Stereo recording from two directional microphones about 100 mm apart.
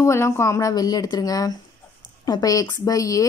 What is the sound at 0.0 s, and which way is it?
A woman's voice, 30° left (ahead or behind).